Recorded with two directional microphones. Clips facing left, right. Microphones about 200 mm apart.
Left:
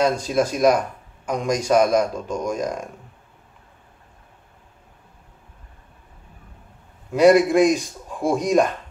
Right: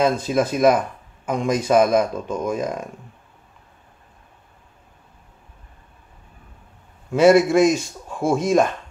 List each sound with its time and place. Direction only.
0.0 s speech: 5° right (ahead or behind)
7.1 s speech: centre (ahead or behind)
7.8 s speech: 15° left (ahead or behind)
8.4 s speech: centre (ahead or behind)